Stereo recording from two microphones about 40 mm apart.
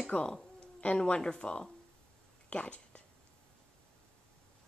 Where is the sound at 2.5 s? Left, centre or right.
Left.